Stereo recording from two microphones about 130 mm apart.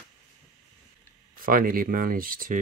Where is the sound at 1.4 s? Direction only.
90° right.